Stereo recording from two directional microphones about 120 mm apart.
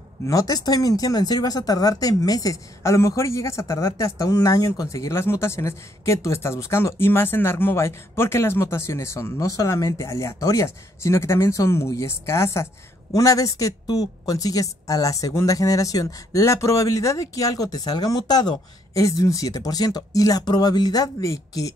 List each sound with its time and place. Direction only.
0.3 s speech: 30° left (ahead or behind)